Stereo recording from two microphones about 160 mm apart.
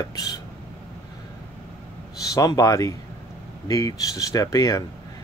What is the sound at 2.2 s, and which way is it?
Speech, 20° left (ahead or behind).